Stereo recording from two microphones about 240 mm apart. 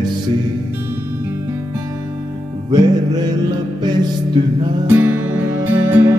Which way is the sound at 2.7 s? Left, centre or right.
Centre.